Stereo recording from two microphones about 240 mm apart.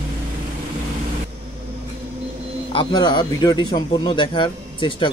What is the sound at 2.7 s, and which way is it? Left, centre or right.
Speech, centre.